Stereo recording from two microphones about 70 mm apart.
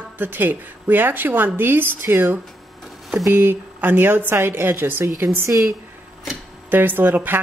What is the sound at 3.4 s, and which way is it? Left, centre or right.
Speech, right.